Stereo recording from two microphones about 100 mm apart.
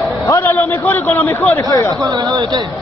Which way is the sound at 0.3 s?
25° left (ahead or behind).